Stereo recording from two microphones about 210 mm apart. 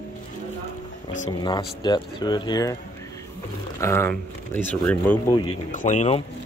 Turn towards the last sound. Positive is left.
turn(degrees=35)  # may be behind; listen again after turning